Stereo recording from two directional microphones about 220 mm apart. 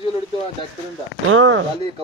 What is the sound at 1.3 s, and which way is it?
Speech, 65° right (ahead or behind).